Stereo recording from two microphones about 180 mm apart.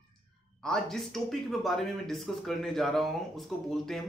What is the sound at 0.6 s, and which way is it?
Speech, 5° left (ahead or behind).